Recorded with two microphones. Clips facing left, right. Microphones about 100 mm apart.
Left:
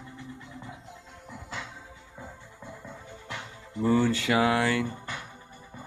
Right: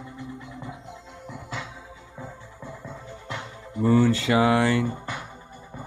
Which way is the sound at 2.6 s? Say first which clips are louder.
Right 4 dB; 55° right (ahead or behind).